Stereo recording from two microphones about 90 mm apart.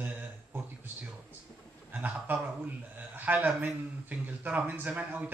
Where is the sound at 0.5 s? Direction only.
20° right (ahead or behind).